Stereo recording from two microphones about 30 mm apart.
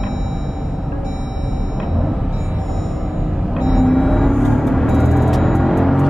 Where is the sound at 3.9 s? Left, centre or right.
Centre.